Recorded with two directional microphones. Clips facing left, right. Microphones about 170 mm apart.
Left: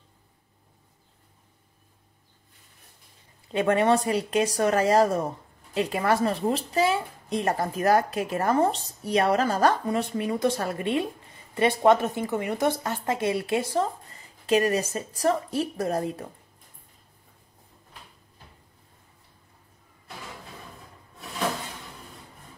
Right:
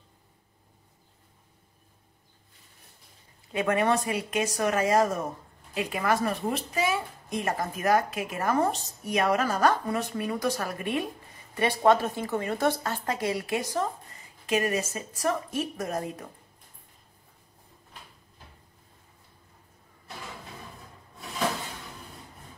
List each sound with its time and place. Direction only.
3.5 s a woman's voice: 30° left (ahead or behind)